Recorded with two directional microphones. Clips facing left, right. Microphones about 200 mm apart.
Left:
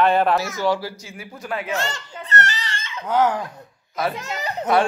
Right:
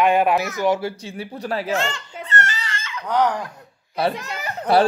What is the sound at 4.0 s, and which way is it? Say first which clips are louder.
Speech: right 3 dB; 30° right (ahead or behind).